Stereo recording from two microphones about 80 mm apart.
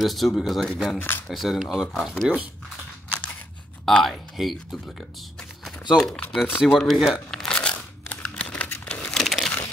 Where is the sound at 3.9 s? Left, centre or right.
Centre.